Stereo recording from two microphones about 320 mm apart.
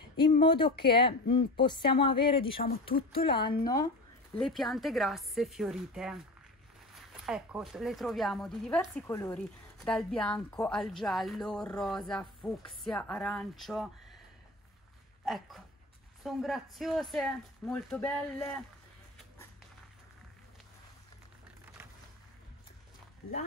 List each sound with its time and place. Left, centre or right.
0.3 s speech: centre
2.9 s speech: left
3.3 s speech: centre
4.4 s speech: centre
15.2 s speech: centre